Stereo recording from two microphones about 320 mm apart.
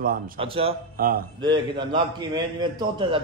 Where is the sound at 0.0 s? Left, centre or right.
Right.